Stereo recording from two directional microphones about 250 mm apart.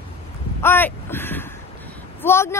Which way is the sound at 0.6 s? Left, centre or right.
Centre.